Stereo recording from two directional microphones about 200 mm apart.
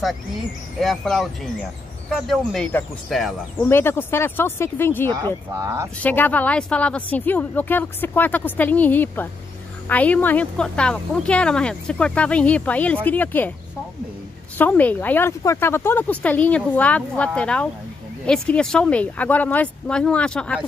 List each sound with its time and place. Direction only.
0.7 s speech: centre (ahead or behind)
3.6 s speech: 10° left (ahead or behind)
5.1 s speech: 15° right (ahead or behind)
5.9 s speech: 10° left (ahead or behind)
14.6 s speech: 10° left (ahead or behind)